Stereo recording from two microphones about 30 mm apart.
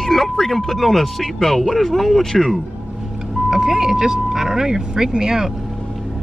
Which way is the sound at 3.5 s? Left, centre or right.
Centre.